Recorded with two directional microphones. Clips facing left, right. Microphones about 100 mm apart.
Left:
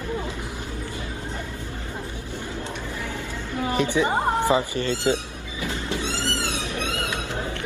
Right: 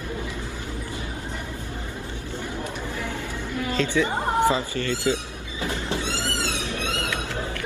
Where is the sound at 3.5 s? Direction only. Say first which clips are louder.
Left 1 dB; 20° left (ahead or behind).